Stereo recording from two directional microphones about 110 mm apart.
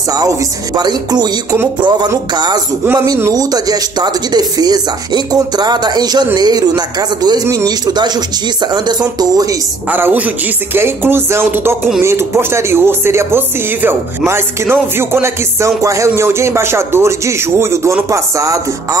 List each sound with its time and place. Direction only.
0.1 s speech: 35° right (ahead or behind)
9.2 s speech: 35° right (ahead or behind)
9.8 s speech: 15° right (ahead or behind)